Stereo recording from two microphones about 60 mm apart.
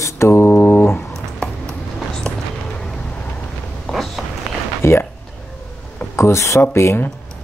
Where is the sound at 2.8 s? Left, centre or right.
Centre.